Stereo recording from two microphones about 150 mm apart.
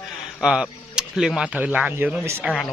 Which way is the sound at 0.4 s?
5° right (ahead or behind).